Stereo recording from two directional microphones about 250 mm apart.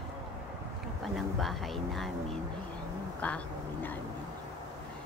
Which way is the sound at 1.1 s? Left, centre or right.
Centre.